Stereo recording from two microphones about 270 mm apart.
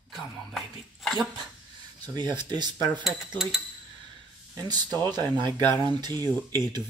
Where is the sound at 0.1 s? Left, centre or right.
Centre.